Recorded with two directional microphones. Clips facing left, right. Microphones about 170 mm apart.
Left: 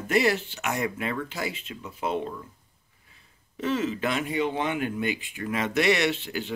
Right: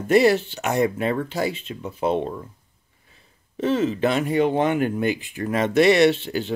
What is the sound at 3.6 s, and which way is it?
Speech, 30° right (ahead or behind).